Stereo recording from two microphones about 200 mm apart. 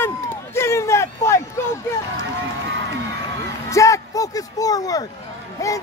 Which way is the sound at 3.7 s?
15° left (ahead or behind).